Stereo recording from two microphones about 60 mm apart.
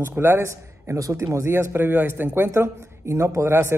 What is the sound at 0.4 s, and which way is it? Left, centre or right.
A man's voice, right.